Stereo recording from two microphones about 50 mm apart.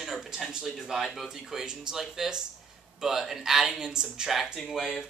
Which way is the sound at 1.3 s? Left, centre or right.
Centre.